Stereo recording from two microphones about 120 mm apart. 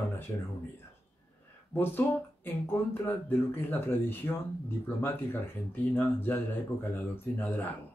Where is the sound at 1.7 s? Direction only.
15° left (ahead or behind).